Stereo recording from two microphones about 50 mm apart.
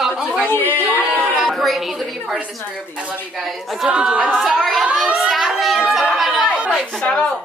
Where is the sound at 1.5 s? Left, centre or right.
Centre.